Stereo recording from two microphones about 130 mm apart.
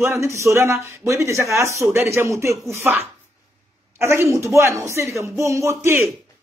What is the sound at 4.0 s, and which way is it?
Speech, 20° right (ahead or behind).